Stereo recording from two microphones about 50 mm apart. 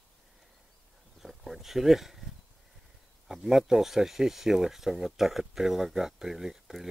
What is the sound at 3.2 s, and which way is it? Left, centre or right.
Speech, centre.